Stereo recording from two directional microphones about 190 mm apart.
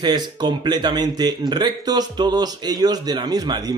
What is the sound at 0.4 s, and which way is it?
A man's voice, 20° right (ahead or behind).